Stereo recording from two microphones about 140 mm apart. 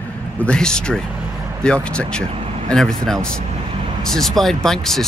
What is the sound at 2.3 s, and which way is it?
Vehicle, 45° right (ahead or behind).